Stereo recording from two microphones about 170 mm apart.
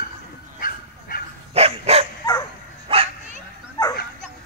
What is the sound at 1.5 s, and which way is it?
Dog, 35° right (ahead or behind).